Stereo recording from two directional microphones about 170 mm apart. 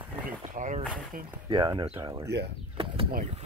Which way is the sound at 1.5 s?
25° right (ahead or behind).